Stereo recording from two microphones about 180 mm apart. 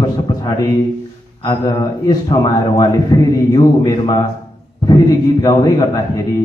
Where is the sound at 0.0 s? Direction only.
20° left (ahead or behind).